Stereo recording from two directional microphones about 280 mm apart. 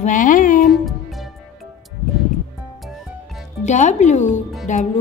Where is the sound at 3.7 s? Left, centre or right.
Left.